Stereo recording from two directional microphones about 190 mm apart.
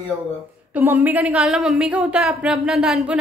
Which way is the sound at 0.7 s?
10° right (ahead or behind).